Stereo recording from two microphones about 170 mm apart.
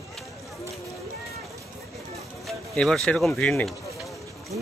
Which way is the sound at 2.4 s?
5° left (ahead or behind).